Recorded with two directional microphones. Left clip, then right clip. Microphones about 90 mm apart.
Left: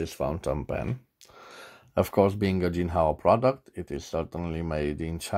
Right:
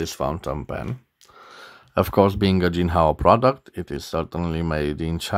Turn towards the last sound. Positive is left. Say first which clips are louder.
# right 5 dB
turn(degrees=-35)  # may be behind; listen again after turning